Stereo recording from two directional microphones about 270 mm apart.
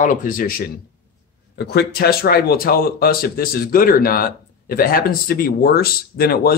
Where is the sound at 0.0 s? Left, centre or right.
Left.